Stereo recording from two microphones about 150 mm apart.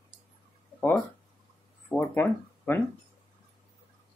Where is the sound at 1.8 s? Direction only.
15° left (ahead or behind).